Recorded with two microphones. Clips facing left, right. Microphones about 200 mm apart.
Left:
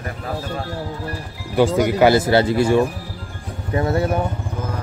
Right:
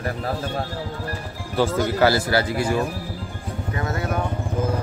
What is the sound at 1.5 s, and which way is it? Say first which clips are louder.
Speech: left 5 dB; 15° left (ahead or behind).